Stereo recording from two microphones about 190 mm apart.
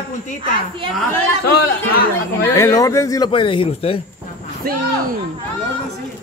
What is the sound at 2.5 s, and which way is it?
Speech, 15° left (ahead or behind).